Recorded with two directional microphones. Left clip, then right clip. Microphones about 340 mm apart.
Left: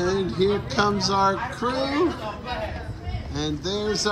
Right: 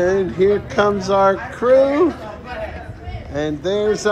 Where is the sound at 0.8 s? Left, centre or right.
Centre.